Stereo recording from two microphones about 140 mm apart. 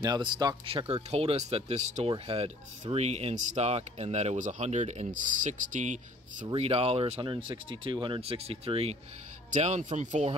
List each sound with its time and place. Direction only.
0.0 s speech: 30° right (ahead or behind); by 2.0 s 55° right (ahead or behind)
2.0 s speech: 40° right (ahead or behind); by 5.9 s 60° right (ahead or behind)
6.4 s speech: 45° right (ahead or behind)
9.5 s speech: 60° right (ahead or behind)